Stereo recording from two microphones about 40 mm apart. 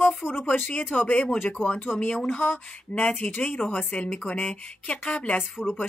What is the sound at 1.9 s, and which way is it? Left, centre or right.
Speech, centre.